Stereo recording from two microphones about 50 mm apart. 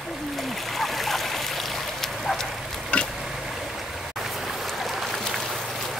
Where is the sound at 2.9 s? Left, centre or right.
Left.